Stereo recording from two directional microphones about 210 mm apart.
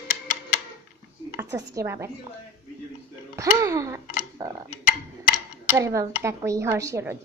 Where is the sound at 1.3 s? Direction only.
15° right (ahead or behind).